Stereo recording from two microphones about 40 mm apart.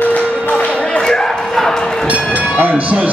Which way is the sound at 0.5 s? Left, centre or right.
Left.